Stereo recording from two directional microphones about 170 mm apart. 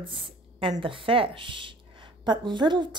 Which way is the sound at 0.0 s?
30° right (ahead or behind).